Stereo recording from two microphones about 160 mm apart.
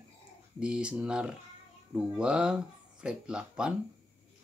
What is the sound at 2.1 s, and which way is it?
Music, 5° right (ahead or behind).